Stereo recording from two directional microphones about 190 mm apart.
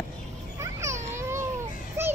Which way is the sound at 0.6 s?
15° right (ahead or behind).